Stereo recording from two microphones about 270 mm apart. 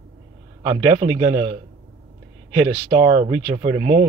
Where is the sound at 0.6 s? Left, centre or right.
Right.